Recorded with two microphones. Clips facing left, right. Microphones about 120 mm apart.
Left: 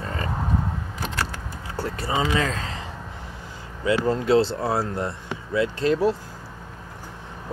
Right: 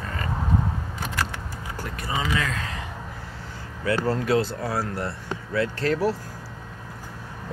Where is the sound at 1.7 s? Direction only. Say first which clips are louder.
Left 5 dB; 30° left (ahead or behind).